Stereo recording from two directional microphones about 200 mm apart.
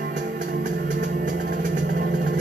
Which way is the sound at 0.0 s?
50° right (ahead or behind).